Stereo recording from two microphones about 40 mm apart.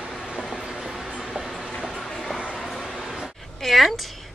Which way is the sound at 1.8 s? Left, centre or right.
Centre.